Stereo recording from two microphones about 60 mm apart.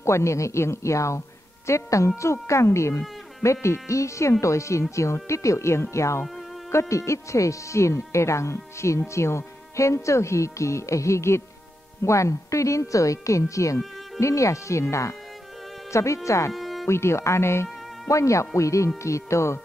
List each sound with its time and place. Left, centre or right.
0.0 s speech: left
16.5 s music: centre
16.8 s speech: left